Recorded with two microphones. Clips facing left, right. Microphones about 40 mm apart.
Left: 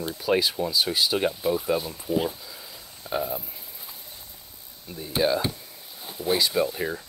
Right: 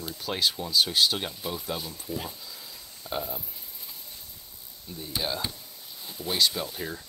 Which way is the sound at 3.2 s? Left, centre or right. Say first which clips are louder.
Left 6 dB; centre.